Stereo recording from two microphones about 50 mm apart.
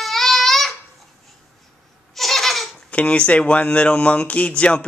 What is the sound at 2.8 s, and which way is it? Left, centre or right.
Speech, left.